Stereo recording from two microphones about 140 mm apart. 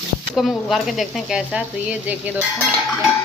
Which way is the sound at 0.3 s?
Centre (ahead or behind).